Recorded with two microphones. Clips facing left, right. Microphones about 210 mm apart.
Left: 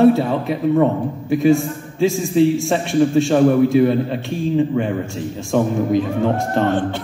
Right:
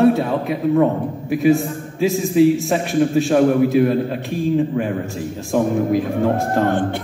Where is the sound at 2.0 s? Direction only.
5° right (ahead or behind).